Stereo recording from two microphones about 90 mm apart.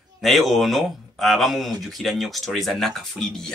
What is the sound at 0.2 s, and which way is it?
Speech, centre (ahead or behind).